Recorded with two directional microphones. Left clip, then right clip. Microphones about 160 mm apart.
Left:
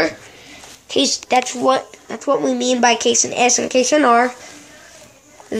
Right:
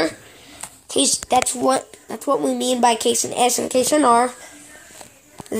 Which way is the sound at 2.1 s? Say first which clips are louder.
Left 3 dB; 15° right (ahead or behind).